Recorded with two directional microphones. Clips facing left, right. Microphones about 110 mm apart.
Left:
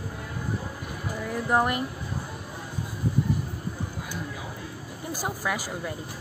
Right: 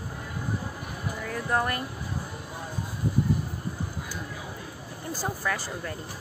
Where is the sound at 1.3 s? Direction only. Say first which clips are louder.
Left 3 dB; 20° left (ahead or behind).